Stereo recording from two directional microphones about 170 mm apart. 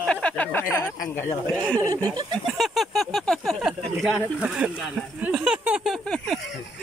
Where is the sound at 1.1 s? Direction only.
10° left (ahead or behind).